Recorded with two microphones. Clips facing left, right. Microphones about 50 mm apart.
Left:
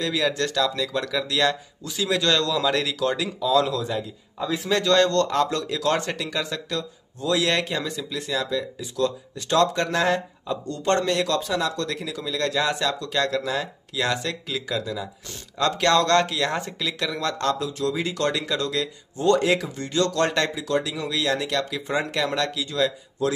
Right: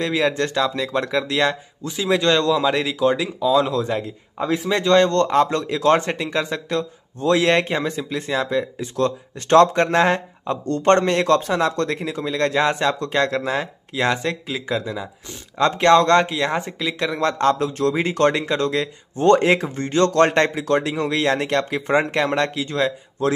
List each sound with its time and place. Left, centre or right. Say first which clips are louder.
0.0 s speech: right 4 dB; right
3.7 s speech: right 5 dB; right
4.6 s speech: right 3 dB; right